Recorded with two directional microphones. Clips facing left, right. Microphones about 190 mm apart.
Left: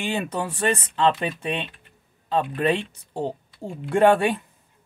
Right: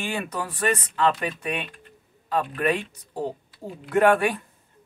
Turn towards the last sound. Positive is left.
turn(degrees=25)  # may be behind; listen again after turning